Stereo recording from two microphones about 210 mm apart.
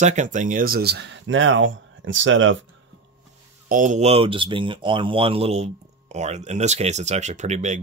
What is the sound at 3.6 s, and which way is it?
Speech, 40° right (ahead or behind).